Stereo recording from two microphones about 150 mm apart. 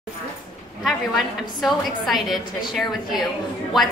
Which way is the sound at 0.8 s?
Centre (ahead or behind).